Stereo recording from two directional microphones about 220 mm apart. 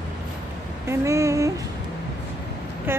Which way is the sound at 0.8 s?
15° right (ahead or behind).